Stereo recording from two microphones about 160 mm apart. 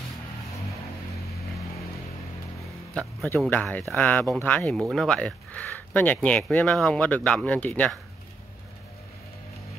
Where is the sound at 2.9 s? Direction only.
10° left (ahead or behind).